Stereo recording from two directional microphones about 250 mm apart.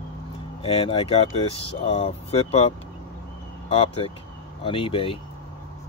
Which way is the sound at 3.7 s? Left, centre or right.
Left.